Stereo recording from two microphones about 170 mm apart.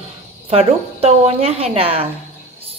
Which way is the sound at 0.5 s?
35° right (ahead or behind).